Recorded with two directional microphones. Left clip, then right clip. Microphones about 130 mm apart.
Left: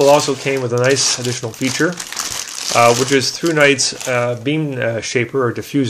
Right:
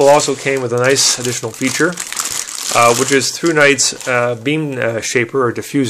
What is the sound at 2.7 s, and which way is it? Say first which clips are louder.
Speech: right 1 dB; 10° right (ahead or behind).